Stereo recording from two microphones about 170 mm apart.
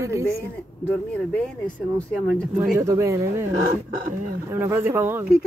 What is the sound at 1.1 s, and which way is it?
Speech, 5° left (ahead or behind).